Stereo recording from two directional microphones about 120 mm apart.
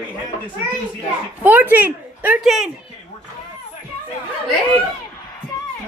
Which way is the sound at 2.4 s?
Centre (ahead or behind).